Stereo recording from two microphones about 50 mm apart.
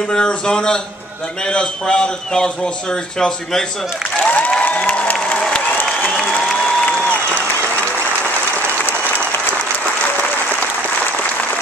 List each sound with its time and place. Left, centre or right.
0.1 s a man's voice: centre
4.2 s applause: left